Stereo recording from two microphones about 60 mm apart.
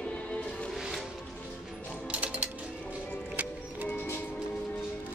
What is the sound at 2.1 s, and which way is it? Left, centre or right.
Mechanisms, right.